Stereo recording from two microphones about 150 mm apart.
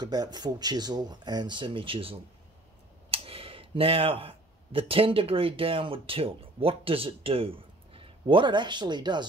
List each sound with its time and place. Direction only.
0.0 s speech: 25° right (ahead or behind)